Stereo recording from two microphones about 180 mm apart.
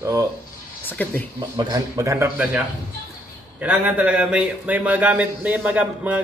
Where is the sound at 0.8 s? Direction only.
10° left (ahead or behind).